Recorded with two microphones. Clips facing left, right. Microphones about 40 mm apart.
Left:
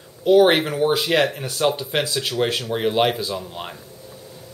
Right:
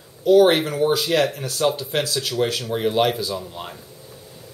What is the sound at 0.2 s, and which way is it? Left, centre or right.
Speech, centre.